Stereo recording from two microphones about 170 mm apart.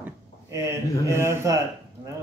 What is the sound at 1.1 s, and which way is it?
Speech, 15° right (ahead or behind).